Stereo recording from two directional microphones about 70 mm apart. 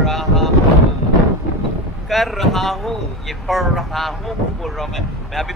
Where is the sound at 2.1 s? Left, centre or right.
Centre.